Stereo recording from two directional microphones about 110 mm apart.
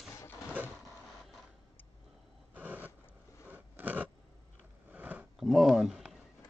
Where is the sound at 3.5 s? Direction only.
15° right (ahead or behind).